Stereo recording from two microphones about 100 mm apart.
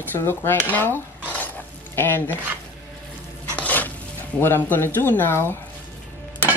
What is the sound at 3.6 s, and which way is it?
Stir, 15° left (ahead or behind).